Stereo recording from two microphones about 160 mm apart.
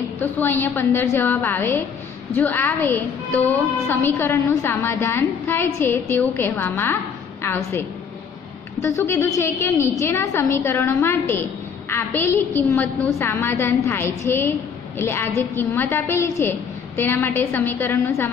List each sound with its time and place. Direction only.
0.2 s a woman's voice: 15° left (ahead or behind)
8.8 s a woman's voice: 15° left (ahead or behind)